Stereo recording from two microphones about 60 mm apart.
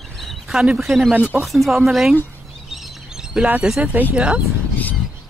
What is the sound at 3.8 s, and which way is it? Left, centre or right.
Speech, right.